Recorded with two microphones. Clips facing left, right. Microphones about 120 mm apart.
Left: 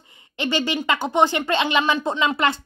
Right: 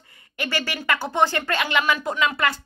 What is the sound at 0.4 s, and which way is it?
Speech, 20° left (ahead or behind).